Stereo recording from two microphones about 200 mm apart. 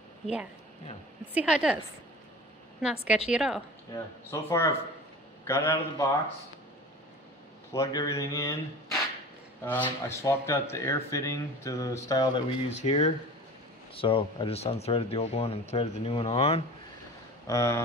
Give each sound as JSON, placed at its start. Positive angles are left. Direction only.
{"t": 1.3, "sound": "a woman's voice", "side_deg": -5}
{"t": 2.8, "sound": "a woman's voice", "side_deg": -5}
{"t": 3.9, "sound": "speech", "side_deg": 15}
{"t": 7.7, "sound": "speech", "side_deg": 15}
{"t": 9.7, "sound": "speech", "side_deg": 10}
{"t": 12.6, "sound": "speech", "side_deg": 35}
{"t": 17.5, "sound": "speech", "side_deg": 15}